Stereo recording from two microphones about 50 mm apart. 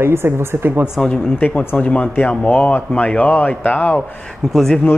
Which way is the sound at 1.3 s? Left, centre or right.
Left.